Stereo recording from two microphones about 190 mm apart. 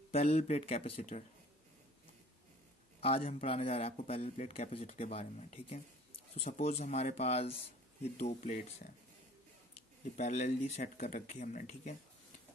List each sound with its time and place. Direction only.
0.1 s speech: 35° left (ahead or behind)
3.3 s speech: 30° left (ahead or behind)
10.1 s speech: 40° left (ahead or behind)